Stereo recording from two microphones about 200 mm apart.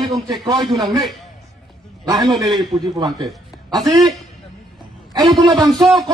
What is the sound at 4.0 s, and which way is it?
Speech, centre (ahead or behind).